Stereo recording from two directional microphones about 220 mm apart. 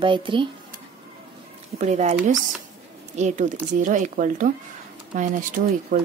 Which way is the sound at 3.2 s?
35° right (ahead or behind).